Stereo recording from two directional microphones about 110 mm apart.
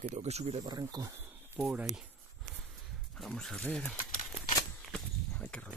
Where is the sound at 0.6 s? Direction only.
40° right (ahead or behind).